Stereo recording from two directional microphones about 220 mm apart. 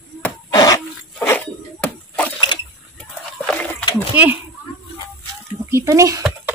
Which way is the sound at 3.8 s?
20° left (ahead or behind).